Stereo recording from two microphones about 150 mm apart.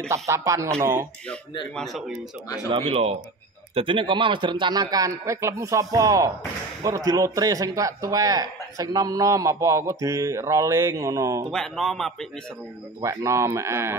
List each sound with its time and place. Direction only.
0.1 s a man's voice: 20° right (ahead or behind)
1.8 s a man's voice: centre (ahead or behind)
2.7 s a man's voice: 40° right (ahead or behind); by 11.4 s 20° right (ahead or behind)
11.5 s a man's voice: centre (ahead or behind)
13.0 s a man's voice: 20° right (ahead or behind)